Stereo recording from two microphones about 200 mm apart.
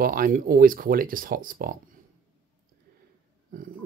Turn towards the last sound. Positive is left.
turn(degrees=-45)  # may be behind; listen again after turning